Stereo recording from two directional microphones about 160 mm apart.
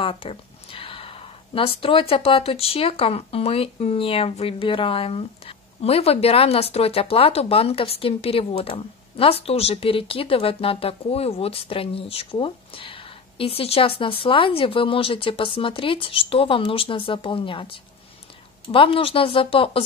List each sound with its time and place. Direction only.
0.0 s speech: 35° left (ahead or behind)